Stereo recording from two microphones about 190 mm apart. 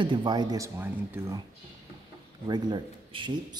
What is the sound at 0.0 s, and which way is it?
A man's voice, 25° right (ahead or behind).